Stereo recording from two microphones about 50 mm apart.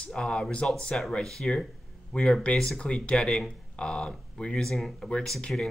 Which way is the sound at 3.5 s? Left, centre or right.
Centre.